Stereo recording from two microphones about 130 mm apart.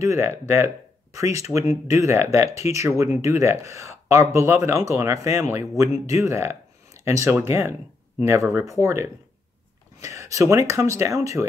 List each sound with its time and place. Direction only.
0.0 s speech: 20° right (ahead or behind)
10.1 s speech: 25° right (ahead or behind)